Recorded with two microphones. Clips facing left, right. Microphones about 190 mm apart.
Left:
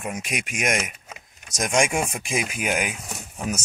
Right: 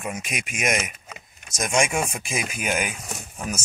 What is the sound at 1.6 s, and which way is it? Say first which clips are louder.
Speech: left 1 dB; 15° left (ahead or behind).